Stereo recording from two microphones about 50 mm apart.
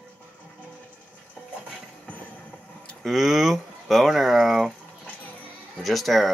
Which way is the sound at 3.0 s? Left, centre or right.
Centre.